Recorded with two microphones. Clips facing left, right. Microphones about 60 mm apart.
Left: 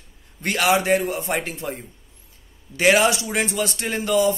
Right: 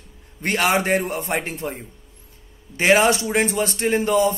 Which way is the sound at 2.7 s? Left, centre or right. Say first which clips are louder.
Right 1 dB; right.